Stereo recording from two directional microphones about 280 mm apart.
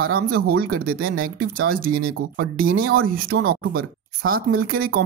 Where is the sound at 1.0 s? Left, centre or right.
Right.